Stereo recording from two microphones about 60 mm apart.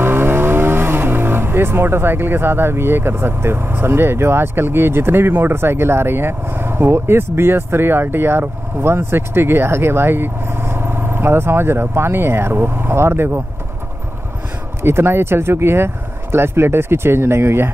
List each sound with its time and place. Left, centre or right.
0.0 s speech: right
14.8 s speech: right